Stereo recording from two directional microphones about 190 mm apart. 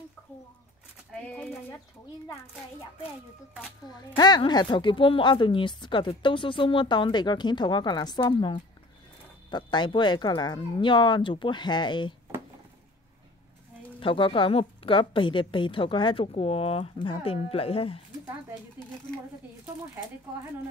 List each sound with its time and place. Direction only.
1.1 s a sound: 5° left (ahead or behind)
3.9 s speech: 20° left (ahead or behind)
13.9 s speech: 25° left (ahead or behind)